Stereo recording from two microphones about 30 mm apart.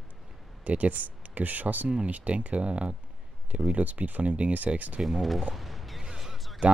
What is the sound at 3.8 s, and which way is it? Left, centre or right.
Speech, right.